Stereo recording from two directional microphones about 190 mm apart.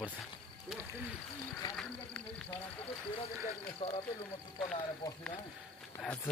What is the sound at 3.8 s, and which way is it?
Speech, 30° left (ahead or behind).